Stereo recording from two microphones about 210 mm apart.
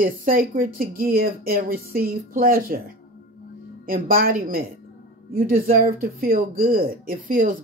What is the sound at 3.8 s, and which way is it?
Speech, 45° right (ahead or behind).